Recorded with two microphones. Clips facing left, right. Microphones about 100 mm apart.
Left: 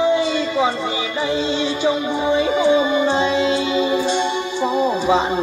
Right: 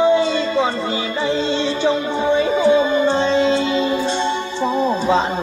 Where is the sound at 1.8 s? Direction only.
15° left (ahead or behind).